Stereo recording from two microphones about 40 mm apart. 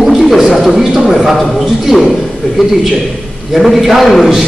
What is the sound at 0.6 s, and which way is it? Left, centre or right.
A man's voice, centre.